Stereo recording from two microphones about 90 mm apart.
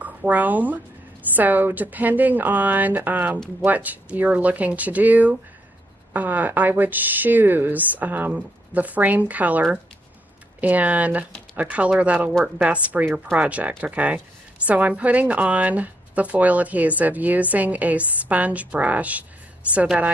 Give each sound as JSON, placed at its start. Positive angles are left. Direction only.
{"t": 0.0, "sound": "a woman's voice", "side_deg": -20}